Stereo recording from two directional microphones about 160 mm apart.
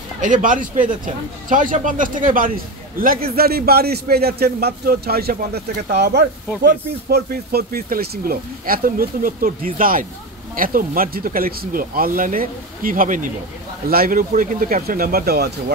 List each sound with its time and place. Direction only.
0.2 s speech: 55° right (ahead or behind)
13.8 s speech: 65° right (ahead or behind)